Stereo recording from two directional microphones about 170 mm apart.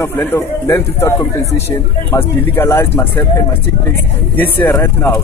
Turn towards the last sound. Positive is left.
turn(degrees=15)  # may be behind; listen again after turning